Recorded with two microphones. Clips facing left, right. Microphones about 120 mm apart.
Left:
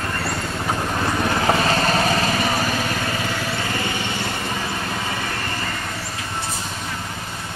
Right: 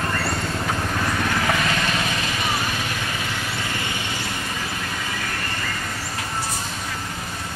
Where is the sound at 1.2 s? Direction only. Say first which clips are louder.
Left 6 dB; 30° left (ahead or behind).